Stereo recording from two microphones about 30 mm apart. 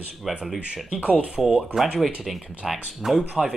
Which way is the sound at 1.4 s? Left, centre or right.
Centre.